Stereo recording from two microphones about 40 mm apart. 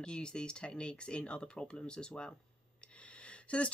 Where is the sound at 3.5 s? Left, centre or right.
Left.